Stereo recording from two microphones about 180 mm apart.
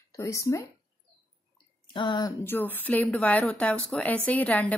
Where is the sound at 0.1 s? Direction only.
15° left (ahead or behind).